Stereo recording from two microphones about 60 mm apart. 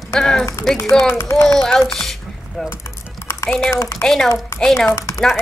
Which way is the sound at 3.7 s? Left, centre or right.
Left.